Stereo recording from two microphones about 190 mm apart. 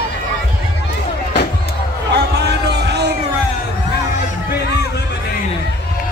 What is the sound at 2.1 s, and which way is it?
Music, 65° right (ahead or behind).